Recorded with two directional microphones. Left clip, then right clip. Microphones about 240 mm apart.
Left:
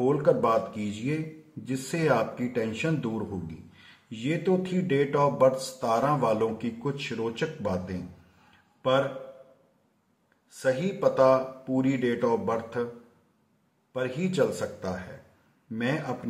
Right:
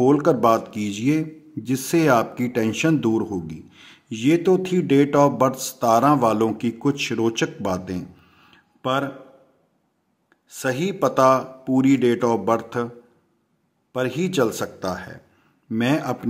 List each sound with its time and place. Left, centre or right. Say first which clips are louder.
0.0 s speech: right 6 dB; right
10.6 s speech: right 3 dB; right
13.9 s speech: right 6 dB; right